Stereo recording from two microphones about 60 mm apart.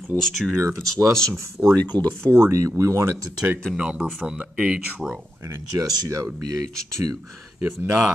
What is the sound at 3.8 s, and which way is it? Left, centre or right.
Speech, centre.